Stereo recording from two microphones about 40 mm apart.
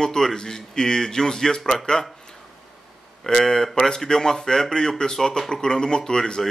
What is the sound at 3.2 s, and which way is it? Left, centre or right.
Speech, centre.